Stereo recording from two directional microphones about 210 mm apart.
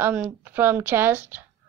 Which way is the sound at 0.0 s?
10° right (ahead or behind).